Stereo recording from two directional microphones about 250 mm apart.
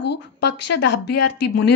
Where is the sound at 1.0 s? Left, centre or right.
Left.